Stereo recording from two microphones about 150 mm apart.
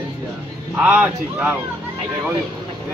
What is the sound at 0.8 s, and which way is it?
Speech, 10° right (ahead or behind).